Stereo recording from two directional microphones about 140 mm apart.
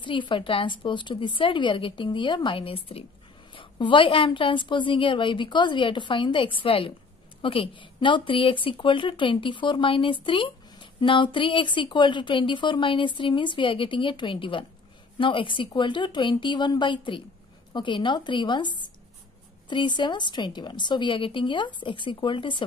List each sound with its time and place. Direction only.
0.0 s speech: 35° left (ahead or behind)